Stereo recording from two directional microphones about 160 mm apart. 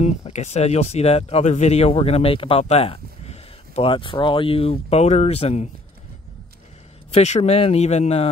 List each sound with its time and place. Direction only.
0.0 s speech: 45° left (ahead or behind)
7.1 s speech: 45° left (ahead or behind)